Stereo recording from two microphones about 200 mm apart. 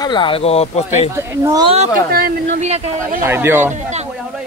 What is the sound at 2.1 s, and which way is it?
Speech, 40° right (ahead or behind).